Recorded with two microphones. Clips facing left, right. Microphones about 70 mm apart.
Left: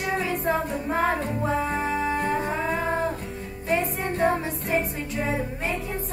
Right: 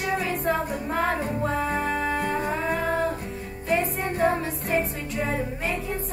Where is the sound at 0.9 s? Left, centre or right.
Centre.